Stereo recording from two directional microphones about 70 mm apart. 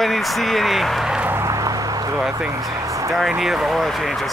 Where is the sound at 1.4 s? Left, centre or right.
Right.